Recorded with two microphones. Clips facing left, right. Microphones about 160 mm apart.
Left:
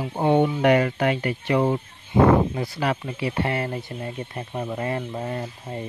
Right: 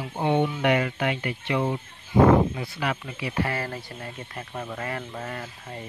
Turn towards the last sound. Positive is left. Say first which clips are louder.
# left 6 dB
turn(degrees=25)  # may be behind; listen again after turning